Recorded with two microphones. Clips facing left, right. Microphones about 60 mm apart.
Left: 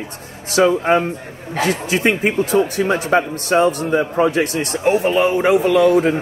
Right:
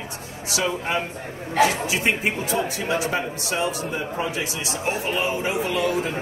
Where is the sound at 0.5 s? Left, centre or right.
Left.